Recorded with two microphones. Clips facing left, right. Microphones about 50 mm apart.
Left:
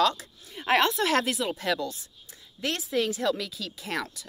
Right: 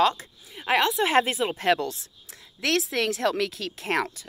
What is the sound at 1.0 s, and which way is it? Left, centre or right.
A woman's voice, right.